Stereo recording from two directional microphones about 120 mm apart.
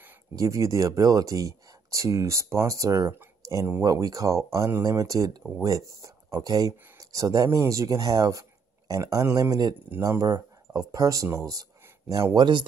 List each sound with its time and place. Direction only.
0.4 s speech: 25° right (ahead or behind)
12.4 s speech: 40° right (ahead or behind)